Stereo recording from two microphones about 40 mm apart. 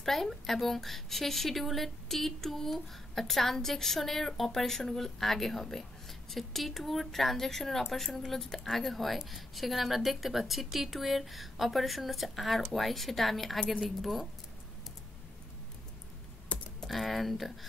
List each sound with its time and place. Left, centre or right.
0.0 s a woman's voice: centre
16.5 s computer keyboard: left
16.8 s a woman's voice: centre